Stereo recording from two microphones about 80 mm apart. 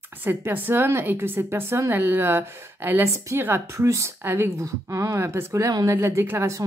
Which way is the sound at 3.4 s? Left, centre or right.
Right.